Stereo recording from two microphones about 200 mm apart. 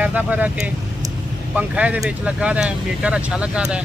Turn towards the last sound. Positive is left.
turn(degrees=-5)  # may be behind; listen again after turning